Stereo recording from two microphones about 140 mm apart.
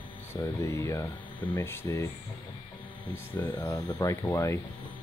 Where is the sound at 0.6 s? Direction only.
20° left (ahead or behind).